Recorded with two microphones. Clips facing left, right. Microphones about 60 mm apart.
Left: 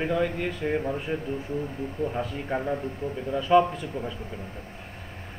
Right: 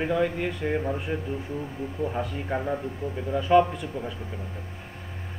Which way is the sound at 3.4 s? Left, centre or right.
Centre.